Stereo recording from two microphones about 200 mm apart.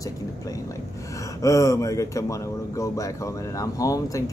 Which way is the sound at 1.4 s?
15° left (ahead or behind).